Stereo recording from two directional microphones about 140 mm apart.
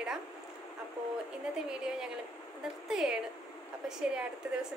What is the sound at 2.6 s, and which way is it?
A woman's voice, 5° right (ahead or behind).